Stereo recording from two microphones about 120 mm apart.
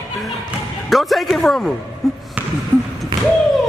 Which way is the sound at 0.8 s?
Centre (ahead or behind).